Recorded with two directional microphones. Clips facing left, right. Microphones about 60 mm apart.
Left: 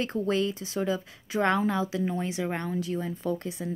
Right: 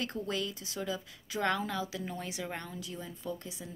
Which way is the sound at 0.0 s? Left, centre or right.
Left.